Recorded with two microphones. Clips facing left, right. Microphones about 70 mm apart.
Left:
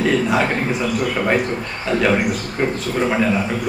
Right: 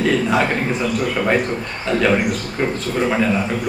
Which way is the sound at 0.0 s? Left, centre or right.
Centre.